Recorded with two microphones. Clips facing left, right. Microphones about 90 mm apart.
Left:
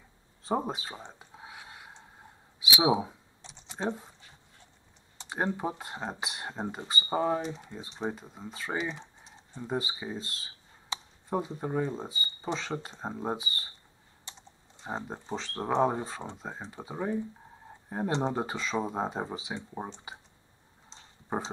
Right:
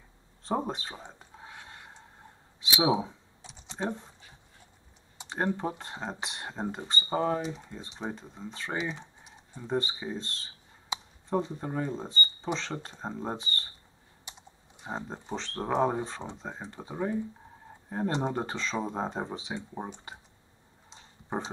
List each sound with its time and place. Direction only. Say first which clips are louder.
0.4 s speech: even; 5° left (ahead or behind)
1.2 s whispering: even; 5° left (ahead or behind)
2.9 s a sound: even; 5° left (ahead or behind)
3.8 s speech: left 1 dB; 5° left (ahead or behind)
5.3 s speech: right 1 dB; 10° left (ahead or behind)
10.9 s a sound: right 2 dB; 15° right (ahead or behind)
11.2 s speech: right 1 dB; 5° left (ahead or behind)
15.2 s speech: even; 5° left (ahead or behind)